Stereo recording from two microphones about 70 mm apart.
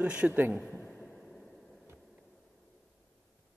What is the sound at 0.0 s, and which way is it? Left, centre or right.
Speech, centre.